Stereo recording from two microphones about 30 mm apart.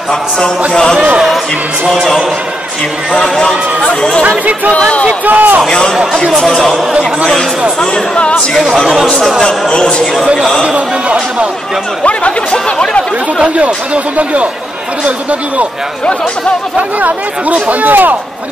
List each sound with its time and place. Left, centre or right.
3.2 s speech: left
4.7 s speech: left
5.2 s speech: right
5.7 s speech: left
7.8 s speech: left
9.5 s speech: left
10.2 s a man's voice: right
12.0 s speech: left
13.6 s speech: right
16.7 s speech: right